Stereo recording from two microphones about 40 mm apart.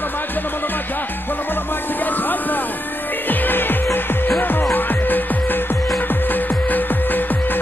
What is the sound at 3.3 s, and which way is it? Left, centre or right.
Music, left.